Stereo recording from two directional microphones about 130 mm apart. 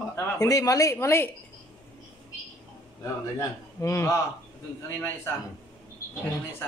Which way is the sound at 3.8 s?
20° left (ahead or behind).